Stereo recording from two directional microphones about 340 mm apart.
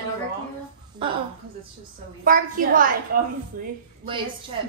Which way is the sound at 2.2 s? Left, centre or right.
Right.